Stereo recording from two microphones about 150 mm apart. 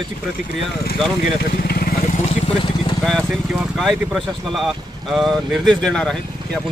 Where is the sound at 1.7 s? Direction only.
90° left.